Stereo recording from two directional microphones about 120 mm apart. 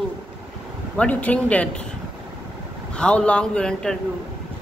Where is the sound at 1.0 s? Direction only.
10° left (ahead or behind).